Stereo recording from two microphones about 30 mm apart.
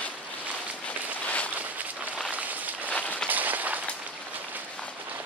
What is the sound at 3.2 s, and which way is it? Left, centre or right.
Run, right.